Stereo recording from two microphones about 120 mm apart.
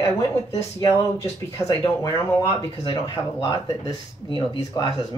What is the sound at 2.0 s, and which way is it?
Speech, 25° left (ahead or behind).